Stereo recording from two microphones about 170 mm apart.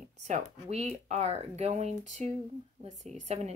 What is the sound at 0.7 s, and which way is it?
A woman's voice, 40° right (ahead or behind).